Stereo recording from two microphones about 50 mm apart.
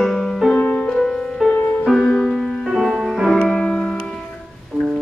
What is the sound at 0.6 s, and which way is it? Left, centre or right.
Music, left.